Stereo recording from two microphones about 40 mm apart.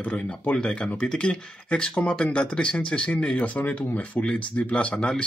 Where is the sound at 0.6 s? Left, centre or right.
Left.